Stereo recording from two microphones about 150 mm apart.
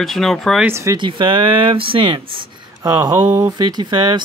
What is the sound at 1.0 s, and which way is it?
Speech, 30° right (ahead or behind).